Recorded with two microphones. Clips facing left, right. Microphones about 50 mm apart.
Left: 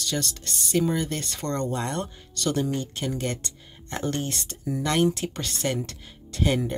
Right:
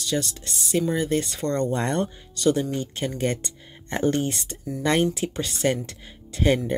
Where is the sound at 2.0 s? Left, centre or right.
Centre.